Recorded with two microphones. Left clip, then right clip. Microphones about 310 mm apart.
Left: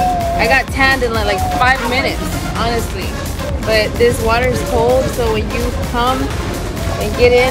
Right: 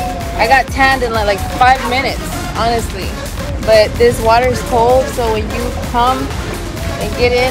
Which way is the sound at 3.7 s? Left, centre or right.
Centre.